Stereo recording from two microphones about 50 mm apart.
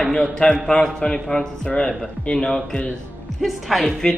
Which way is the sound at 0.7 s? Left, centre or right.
Left.